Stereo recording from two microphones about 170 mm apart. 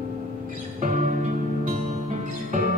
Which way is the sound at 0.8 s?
50° right (ahead or behind).